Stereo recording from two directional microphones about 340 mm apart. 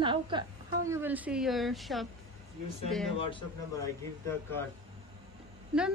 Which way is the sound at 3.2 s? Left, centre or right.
Centre.